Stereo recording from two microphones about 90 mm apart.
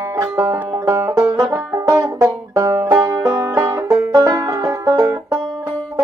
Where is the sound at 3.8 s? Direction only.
45° right (ahead or behind).